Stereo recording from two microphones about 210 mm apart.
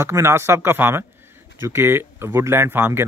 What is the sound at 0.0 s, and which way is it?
Speech, 10° right (ahead or behind).